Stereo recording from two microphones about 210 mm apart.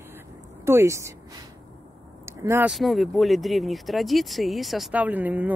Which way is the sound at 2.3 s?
15° right (ahead or behind).